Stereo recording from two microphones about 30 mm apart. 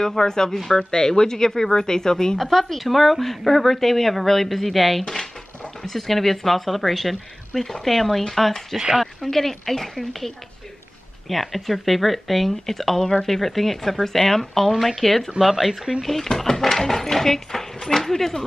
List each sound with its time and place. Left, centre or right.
0.0 s speech: centre
0.9 s speech: left
2.3 s speech: centre
5.0 s speech: centre
8.7 s speech: centre
9.0 s speech: centre
16.0 s speech: centre